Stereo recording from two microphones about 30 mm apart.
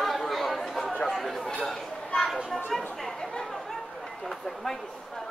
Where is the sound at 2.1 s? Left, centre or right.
Left.